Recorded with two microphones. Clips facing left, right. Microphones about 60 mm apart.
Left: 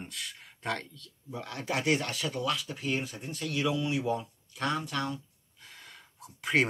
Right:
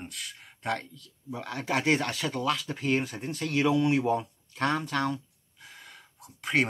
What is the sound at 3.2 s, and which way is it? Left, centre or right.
Speech, right.